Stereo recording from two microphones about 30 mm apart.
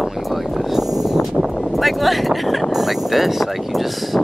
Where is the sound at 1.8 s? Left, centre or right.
Centre.